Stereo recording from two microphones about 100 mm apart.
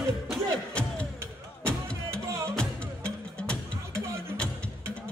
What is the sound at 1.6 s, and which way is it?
Music, 10° left (ahead or behind).